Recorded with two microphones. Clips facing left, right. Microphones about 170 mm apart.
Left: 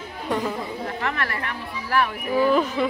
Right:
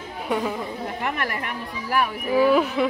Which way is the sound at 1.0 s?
15° right (ahead or behind).